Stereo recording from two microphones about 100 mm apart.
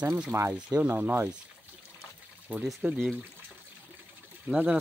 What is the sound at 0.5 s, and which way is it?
Speech, 10° right (ahead or behind).